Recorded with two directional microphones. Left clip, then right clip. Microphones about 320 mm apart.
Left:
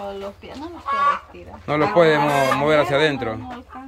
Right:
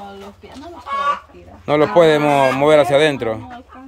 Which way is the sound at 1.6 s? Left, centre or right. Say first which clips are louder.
Right 4 dB; centre.